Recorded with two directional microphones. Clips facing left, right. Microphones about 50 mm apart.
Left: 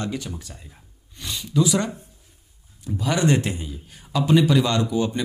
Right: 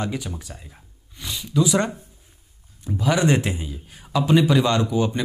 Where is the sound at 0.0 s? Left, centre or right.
Centre.